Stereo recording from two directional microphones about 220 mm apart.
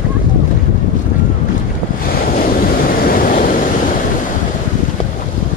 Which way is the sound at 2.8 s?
40° left (ahead or behind).